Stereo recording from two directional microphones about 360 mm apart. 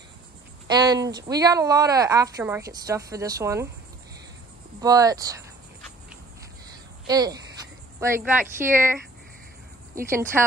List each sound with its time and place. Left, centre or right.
0.7 s speech: centre
4.7 s speech: centre
7.1 s speech: centre
10.0 s speech: centre